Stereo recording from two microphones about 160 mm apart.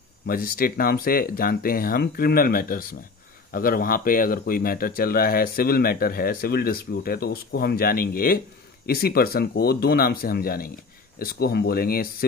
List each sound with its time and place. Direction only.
0.3 s speech: 65° left (ahead or behind)